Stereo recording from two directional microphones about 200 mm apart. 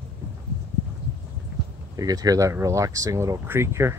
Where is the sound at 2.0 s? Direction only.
20° right (ahead or behind).